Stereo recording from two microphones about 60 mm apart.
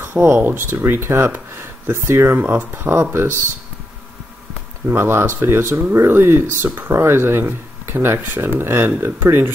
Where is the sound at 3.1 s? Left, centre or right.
Right.